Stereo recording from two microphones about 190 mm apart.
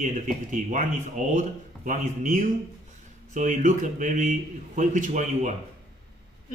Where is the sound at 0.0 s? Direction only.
40° right (ahead or behind).